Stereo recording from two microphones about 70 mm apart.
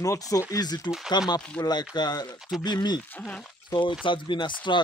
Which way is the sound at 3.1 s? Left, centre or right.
Centre.